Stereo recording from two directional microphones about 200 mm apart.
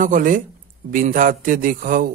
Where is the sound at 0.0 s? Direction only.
40° right (ahead or behind).